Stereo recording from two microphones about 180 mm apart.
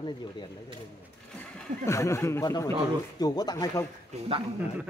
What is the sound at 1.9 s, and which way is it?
Speech, 15° left (ahead or behind).